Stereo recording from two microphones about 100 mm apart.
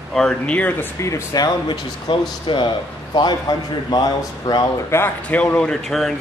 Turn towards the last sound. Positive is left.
turn(degrees=5)  # may be behind; listen again after turning